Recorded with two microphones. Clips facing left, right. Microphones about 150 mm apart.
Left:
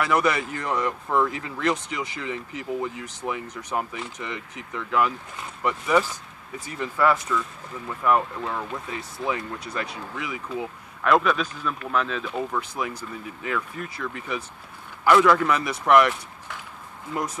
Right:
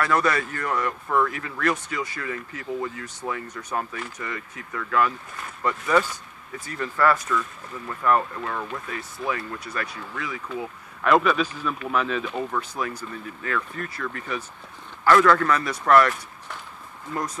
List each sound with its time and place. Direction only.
0.0 s speech: 15° left (ahead or behind)
11.0 s speech: centre (ahead or behind); by 16.2 s 15° left (ahead or behind)